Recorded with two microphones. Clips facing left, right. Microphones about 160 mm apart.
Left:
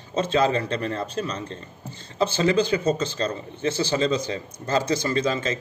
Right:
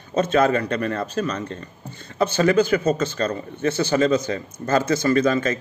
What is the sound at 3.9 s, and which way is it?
Speech, 25° left (ahead or behind).